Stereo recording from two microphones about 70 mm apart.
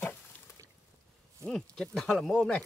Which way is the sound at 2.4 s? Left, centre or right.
Centre.